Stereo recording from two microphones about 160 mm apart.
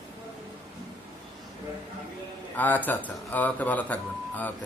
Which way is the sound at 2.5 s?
10° left (ahead or behind).